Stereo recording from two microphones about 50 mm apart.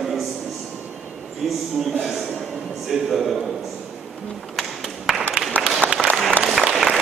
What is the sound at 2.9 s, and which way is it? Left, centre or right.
Speech, centre.